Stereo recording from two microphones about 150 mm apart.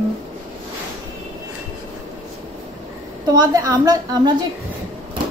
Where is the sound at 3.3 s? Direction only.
25° right (ahead or behind).